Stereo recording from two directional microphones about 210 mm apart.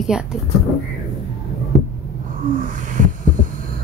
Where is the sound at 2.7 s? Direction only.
40° right (ahead or behind).